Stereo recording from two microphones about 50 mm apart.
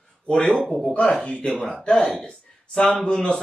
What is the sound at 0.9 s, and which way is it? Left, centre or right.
Speech, centre.